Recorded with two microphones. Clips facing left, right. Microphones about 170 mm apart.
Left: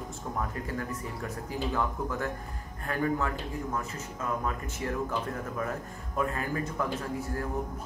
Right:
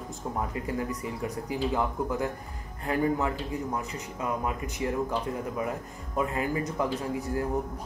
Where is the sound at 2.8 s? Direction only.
20° right (ahead or behind).